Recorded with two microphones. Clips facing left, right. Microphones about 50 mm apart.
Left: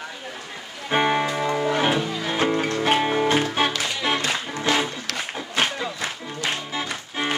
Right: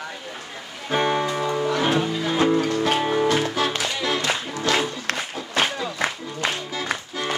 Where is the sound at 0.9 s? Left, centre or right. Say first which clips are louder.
Left 1 dB; left.